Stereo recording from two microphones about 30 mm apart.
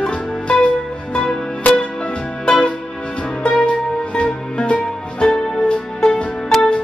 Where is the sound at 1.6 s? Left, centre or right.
Left.